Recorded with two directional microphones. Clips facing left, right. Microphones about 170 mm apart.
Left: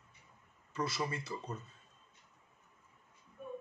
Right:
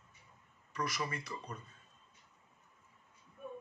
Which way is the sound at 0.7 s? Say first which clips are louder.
Left 2 dB; 30° left (ahead or behind).